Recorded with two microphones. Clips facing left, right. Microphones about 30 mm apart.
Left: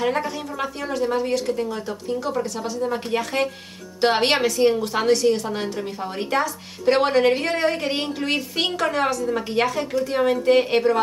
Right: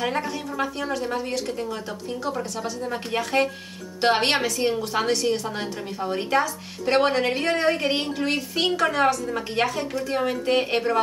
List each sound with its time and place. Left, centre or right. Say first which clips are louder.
0.0 s a woman's voice: left 3 dB; centre
10.1 s speech: left 5 dB; centre
10.4 s a woman's voice: left 6 dB; centre